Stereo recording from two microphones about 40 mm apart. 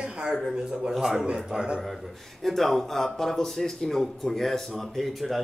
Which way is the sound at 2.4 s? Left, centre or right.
Centre.